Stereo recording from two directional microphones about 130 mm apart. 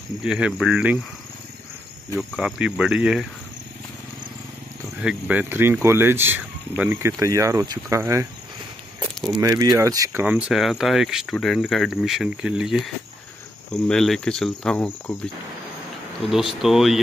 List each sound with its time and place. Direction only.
0.2 s speech: 5° right (ahead or behind)
2.1 s speech: 5° right (ahead or behind)
5.0 s speech: 15° right (ahead or behind)
9.4 s speech: 25° right (ahead or behind)
10.5 s speech: 5° right (ahead or behind)
16.3 s speech: centre (ahead or behind)